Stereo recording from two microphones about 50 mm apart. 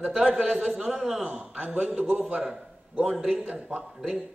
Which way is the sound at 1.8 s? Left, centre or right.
Centre.